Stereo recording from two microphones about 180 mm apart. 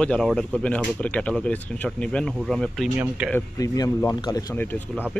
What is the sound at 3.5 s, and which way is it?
Speech, 20° left (ahead or behind).